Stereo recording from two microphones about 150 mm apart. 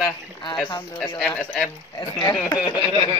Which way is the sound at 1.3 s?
5° left (ahead or behind).